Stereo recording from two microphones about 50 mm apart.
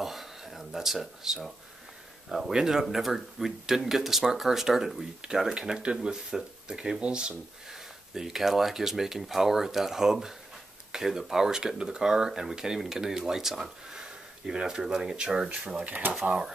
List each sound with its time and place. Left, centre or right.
0.0 s a sound: centre
2.2 s speech: centre
8.1 s speech: centre; by 16.2 s right